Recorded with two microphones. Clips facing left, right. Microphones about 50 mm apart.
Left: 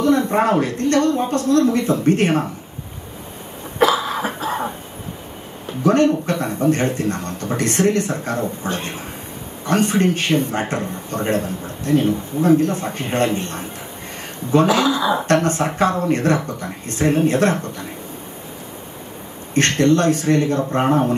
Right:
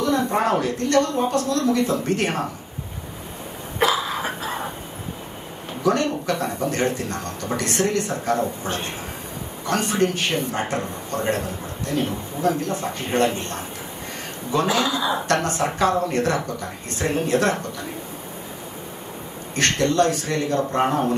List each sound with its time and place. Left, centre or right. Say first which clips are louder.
0.0 s a man's voice: left 4 dB; left
5.9 s a man's voice: left 5 dB; left
9.7 s a man's voice: left 4 dB; left
14.5 s a man's voice: left 6 dB; left
19.5 s a man's voice: left 5 dB; left